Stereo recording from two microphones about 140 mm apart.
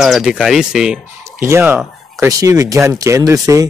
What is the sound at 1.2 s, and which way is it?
Speech, 20° right (ahead or behind).